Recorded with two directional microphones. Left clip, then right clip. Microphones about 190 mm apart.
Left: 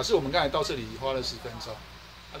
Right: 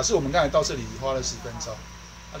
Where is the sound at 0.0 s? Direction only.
30° left (ahead or behind).